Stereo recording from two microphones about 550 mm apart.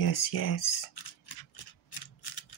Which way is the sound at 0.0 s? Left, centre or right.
Left.